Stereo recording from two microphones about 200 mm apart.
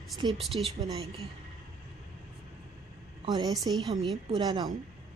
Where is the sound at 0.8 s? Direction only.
20° right (ahead or behind).